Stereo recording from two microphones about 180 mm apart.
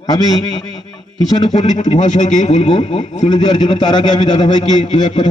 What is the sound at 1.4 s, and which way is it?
A man's voice, 35° left (ahead or behind).